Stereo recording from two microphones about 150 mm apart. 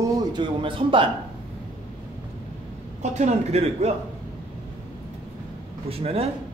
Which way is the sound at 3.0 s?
50° right (ahead or behind).